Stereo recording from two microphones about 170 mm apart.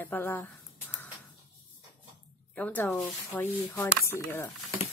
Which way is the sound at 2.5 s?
10° left (ahead or behind).